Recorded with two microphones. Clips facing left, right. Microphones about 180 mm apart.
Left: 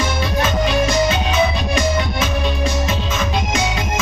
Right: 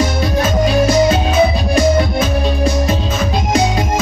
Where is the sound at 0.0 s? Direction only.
40° right (ahead or behind).